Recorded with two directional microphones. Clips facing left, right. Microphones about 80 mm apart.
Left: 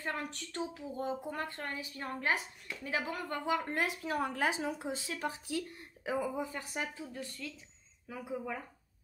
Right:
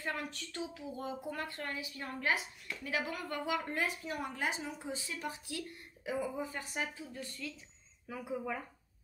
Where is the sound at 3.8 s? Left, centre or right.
Left.